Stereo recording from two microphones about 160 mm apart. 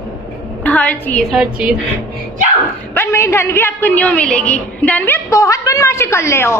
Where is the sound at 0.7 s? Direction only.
10° left (ahead or behind).